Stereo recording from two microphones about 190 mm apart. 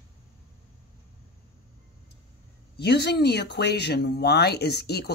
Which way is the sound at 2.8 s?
60° left (ahead or behind).